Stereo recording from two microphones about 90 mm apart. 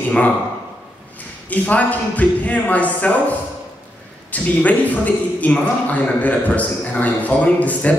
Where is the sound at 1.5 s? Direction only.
15° left (ahead or behind).